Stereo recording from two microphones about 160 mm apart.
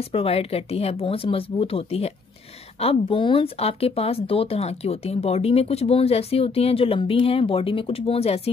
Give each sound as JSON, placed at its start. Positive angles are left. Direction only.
{"t": 0.0, "sound": "speech", "side_deg": 40}